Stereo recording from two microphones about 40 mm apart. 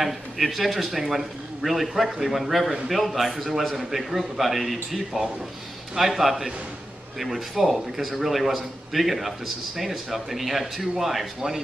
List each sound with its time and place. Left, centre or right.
0.0 s speech: centre
5.9 s a man's voice: centre